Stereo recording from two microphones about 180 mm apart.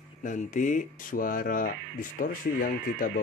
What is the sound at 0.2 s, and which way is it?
Speech, 45° left (ahead or behind).